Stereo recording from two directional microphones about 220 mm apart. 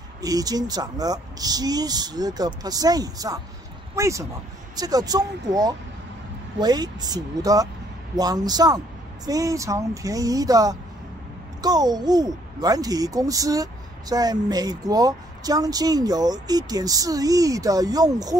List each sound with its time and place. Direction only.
0.2 s a child's voice: 15° right (ahead or behind)